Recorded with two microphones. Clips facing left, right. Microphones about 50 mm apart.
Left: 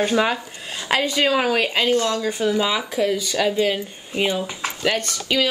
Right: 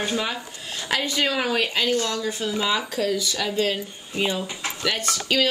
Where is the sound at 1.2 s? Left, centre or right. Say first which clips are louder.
Left 4 dB; centre.